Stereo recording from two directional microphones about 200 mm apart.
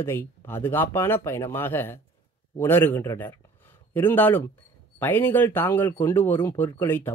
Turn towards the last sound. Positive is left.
turn(degrees=10)  # may be behind; listen again after turning